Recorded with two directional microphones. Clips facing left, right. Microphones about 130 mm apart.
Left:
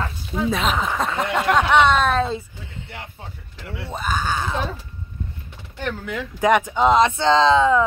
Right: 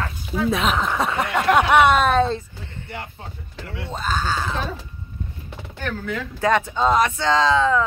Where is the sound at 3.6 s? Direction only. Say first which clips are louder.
Even; 5° left (ahead or behind).